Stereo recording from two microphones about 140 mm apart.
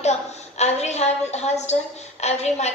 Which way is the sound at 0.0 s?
50° left (ahead or behind).